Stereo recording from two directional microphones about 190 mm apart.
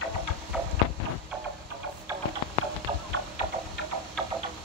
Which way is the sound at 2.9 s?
25° right (ahead or behind).